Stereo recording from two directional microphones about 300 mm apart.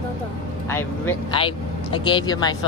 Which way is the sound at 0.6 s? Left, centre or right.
Centre.